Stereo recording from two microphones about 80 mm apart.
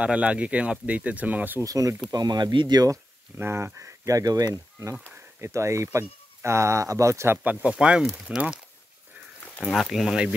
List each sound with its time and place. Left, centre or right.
0.0 s speech: centre
1.6 s speech: right
2.1 s speech: right
3.3 s speech: right
5.1 s speech: right
7.4 s speech: centre
9.6 s speech: centre